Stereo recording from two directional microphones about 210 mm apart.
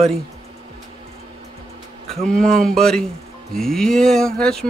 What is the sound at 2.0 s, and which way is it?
Speech, centre (ahead or behind).